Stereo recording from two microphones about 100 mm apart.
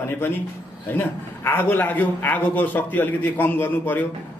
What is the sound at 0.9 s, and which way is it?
A man's voice, 20° left (ahead or behind).